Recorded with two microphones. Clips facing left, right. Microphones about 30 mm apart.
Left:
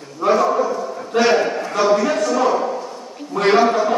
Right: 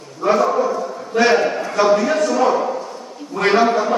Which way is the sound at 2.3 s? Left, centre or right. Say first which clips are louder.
Right 1 dB; centre.